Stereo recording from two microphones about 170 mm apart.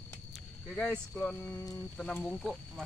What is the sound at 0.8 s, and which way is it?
Speech, 5° left (ahead or behind).